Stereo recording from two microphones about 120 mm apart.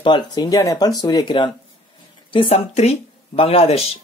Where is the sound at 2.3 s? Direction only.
55° left (ahead or behind).